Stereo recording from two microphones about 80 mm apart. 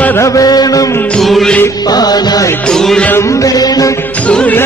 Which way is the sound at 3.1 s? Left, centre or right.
Left.